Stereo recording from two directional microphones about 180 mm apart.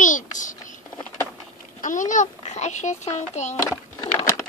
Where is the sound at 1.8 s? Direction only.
45° left (ahead or behind).